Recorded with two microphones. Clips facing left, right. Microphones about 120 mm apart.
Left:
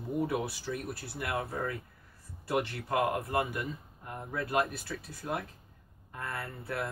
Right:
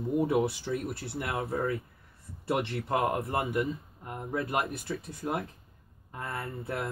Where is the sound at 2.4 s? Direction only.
25° right (ahead or behind).